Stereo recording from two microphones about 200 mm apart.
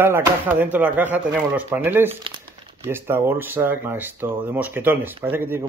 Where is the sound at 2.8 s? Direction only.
10° right (ahead or behind).